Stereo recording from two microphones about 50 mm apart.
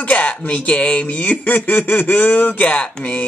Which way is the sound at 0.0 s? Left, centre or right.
Left.